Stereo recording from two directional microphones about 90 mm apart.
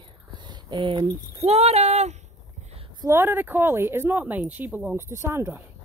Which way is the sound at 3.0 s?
25° right (ahead or behind).